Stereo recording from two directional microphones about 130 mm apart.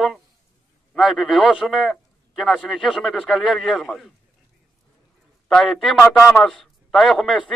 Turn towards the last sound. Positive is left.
turn(degrees=0)  # may be behind; listen again after turning